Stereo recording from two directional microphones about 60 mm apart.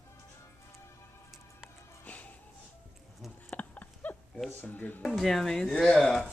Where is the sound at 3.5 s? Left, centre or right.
Left.